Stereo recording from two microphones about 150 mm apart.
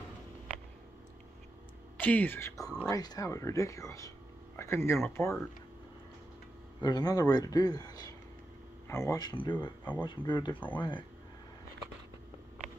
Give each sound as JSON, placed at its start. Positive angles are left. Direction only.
{"t": 2.0, "sound": "speech", "side_deg": 10}
{"t": 6.8, "sound": "speech", "side_deg": 30}